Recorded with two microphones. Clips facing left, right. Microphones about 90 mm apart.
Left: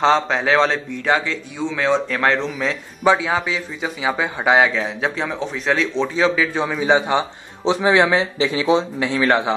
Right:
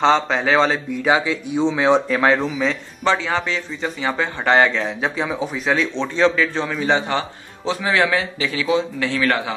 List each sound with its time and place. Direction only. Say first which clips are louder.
0.0 s speech: even; centre (ahead or behind); by 2.0 s 20° right (ahead or behind)
2.0 s a man's voice: right 2 dB; 5° right (ahead or behind); by 9.5 s 25° left (ahead or behind)